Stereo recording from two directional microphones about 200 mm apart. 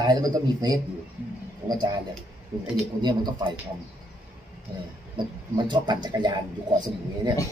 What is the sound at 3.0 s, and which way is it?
Speech, 20° right (ahead or behind).